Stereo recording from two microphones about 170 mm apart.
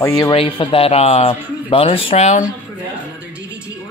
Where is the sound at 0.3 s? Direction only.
30° left (ahead or behind).